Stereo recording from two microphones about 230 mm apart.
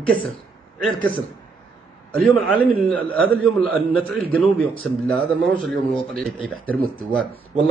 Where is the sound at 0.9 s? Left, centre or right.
Right.